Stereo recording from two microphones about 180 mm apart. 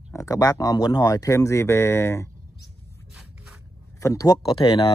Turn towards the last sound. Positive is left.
turn(degrees=30)  # may be behind; listen again after turning